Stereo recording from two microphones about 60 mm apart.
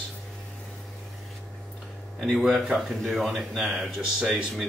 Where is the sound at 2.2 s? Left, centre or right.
Centre.